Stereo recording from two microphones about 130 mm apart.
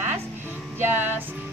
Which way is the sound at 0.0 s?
15° right (ahead or behind).